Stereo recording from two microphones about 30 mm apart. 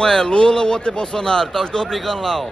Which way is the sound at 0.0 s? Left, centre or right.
Left.